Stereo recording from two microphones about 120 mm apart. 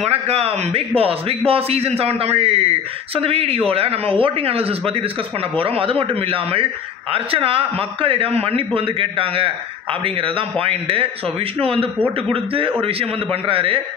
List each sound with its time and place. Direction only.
0.0 s a man's voice: 60° right (ahead or behind)